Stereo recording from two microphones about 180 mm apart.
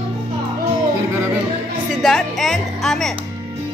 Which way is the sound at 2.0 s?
Centre (ahead or behind).